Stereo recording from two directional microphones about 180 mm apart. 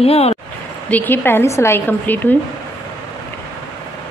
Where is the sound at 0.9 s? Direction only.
10° left (ahead or behind).